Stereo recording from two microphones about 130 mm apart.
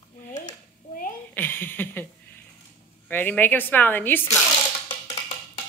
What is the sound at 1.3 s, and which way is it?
Speech, 15° left (ahead or behind).